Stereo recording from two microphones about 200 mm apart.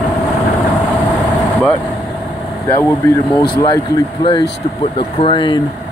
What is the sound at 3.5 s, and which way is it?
Speech, 20° left (ahead or behind).